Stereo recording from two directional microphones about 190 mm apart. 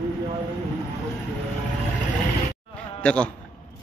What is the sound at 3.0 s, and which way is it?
Speech, 5° left (ahead or behind).